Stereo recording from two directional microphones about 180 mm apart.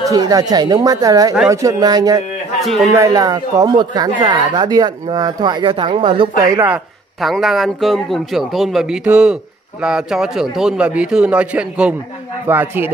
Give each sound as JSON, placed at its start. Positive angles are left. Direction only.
{"t": 0.0, "sound": "speech", "side_deg": -20}
{"t": 2.6, "sound": "a man's voice", "side_deg": 0}
{"t": 2.9, "sound": "speech", "side_deg": -15}
{"t": 6.7, "sound": "a man's voice", "side_deg": 0}